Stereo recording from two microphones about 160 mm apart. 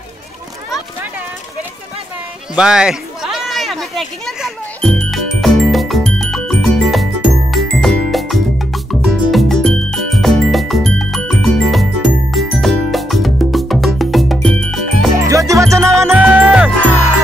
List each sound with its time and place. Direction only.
2.5 s a sound: 5° right (ahead or behind)
7.5 s music: centre (ahead or behind)
15.1 s music: 20° right (ahead or behind)